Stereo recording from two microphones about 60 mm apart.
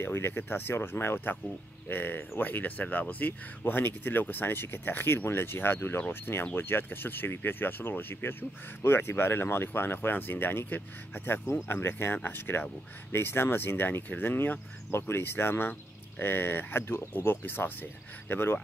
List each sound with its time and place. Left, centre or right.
0.0 s speech: left